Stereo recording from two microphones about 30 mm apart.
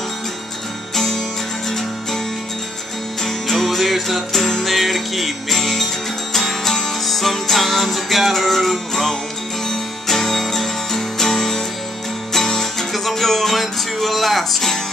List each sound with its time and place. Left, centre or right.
0.9 s music: centre
3.3 s music: centre